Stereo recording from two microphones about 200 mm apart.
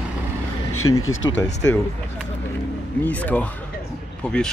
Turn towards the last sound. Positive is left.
turn(degrees=5)  # may be behind; listen again after turning